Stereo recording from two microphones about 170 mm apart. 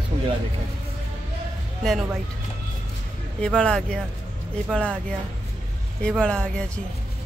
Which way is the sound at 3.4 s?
5° left (ahead or behind).